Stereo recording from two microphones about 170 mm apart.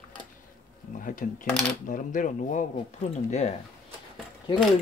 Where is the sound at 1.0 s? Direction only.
55° left (ahead or behind).